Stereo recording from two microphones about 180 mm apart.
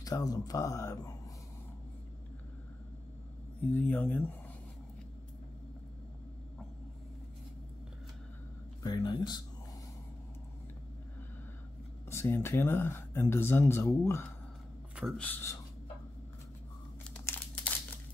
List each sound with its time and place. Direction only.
0.0 s speech: 20° left (ahead or behind)
3.6 s speech: 10° left (ahead or behind)
8.8 s speech: 25° left (ahead or behind)
12.1 s speech: 15° left (ahead or behind)
15.0 s speech: 5° left (ahead or behind)
17.1 s crumpling: 10° left (ahead or behind)